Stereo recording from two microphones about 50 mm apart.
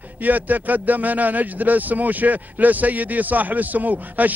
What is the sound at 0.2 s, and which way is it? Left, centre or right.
A man's voice, right.